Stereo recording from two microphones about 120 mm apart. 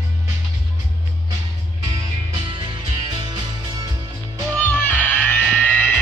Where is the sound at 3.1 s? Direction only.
35° right (ahead or behind).